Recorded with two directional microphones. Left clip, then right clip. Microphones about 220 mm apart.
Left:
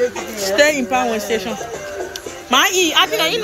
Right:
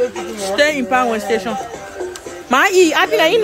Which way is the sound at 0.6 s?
10° right (ahead or behind).